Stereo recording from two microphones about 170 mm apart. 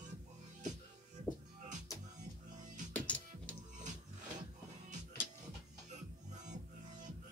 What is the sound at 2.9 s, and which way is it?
Music, 10° left (ahead or behind).